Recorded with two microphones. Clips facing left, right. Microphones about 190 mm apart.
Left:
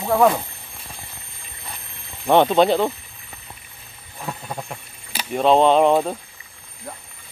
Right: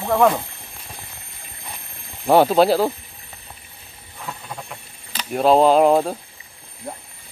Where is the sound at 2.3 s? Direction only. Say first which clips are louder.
Right 1 dB; 5° right (ahead or behind).